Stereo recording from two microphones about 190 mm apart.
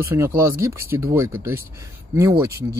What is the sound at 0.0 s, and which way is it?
Speech, 15° right (ahead or behind).